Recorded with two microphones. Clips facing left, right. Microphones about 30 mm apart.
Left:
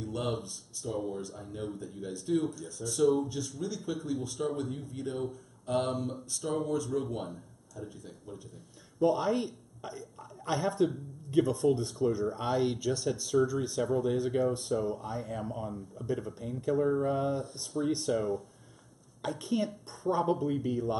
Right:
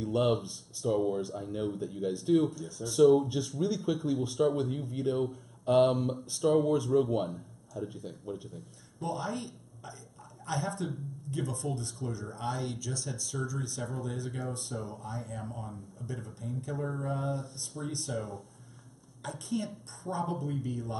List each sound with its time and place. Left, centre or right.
0.0 s speech: centre
8.1 s speech: centre
9.0 s speech: centre
19.7 s a woman's voice: centre
20.1 s speech: centre